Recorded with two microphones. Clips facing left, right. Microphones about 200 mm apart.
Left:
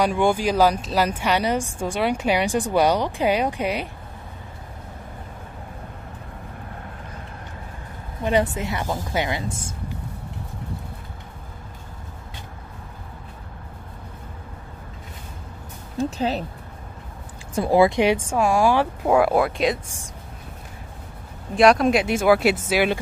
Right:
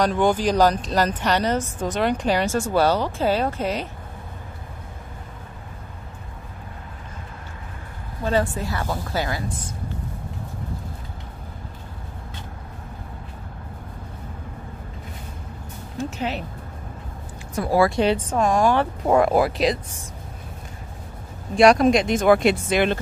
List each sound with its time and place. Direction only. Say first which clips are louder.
0.0 s a woman's voice: even; 10° left (ahead or behind)
8.2 s a woman's voice: left 1 dB; 20° left (ahead or behind)
16.0 s speech: left 4 dB; 35° left (ahead or behind)
17.6 s a woman's voice: left 2 dB; 20° left (ahead or behind); by 19.8 s centre (ahead or behind)
21.5 s a woman's voice: right 1 dB; centre (ahead or behind)